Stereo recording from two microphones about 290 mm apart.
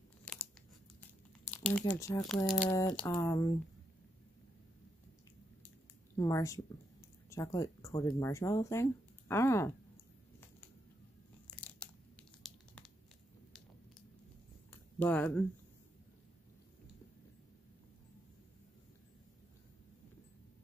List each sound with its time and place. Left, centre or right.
1.5 s crumpling: centre
2.0 s speech: centre
6.1 s speech: centre
11.5 s crunch: centre
14.7 s a sound: centre